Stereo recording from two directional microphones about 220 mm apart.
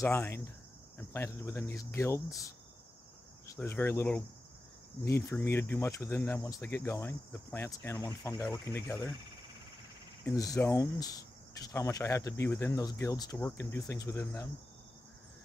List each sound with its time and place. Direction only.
0.0 s speech: 10° left (ahead or behind)
3.5 s speech: 10° left (ahead or behind)
10.2 s speech: 15° left (ahead or behind)